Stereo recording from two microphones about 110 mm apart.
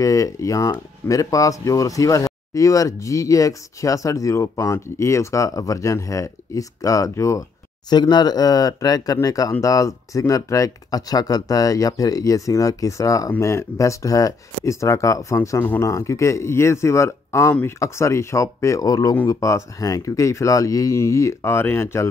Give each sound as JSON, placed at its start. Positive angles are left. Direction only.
{"t": 0.0, "sound": "speech", "side_deg": 30}
{"t": 7.9, "sound": "speech", "side_deg": 40}
{"t": 15.6, "sound": "speech", "side_deg": 15}
{"t": 15.9, "sound": "speech", "side_deg": 30}